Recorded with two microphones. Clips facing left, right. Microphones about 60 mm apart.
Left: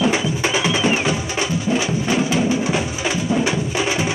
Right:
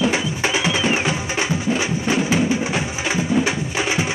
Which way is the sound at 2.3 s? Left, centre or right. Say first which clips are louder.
Left 1 dB; centre.